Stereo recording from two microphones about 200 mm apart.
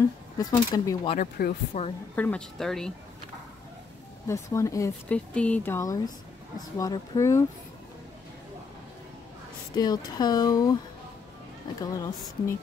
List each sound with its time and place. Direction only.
0.4 s speech: 20° left (ahead or behind)
1.1 s speech: 40° left (ahead or behind)
2.1 s speech: 5° left (ahead or behind)
4.3 s speech: 15° left (ahead or behind)
9.8 s speech: 20° left (ahead or behind)
11.8 s speech: 20° left (ahead or behind)